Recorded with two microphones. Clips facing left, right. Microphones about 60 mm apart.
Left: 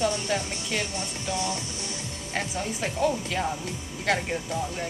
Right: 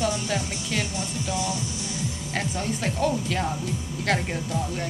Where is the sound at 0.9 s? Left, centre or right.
Left.